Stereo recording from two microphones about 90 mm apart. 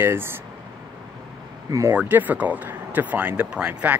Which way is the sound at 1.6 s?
40° right (ahead or behind).